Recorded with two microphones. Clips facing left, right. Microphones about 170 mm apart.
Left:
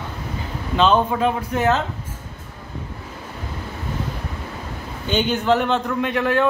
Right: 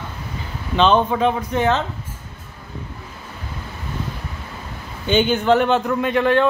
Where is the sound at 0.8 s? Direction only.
5° left (ahead or behind).